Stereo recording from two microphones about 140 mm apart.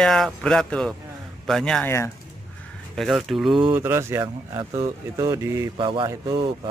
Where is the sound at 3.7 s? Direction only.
15° right (ahead or behind).